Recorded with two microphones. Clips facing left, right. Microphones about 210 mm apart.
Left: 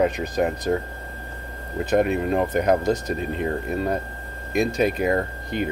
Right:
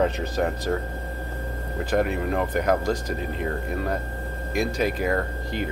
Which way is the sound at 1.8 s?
20° left (ahead or behind).